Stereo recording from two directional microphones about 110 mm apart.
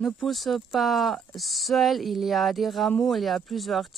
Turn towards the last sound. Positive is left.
turn(degrees=0)  # may be behind; listen again after turning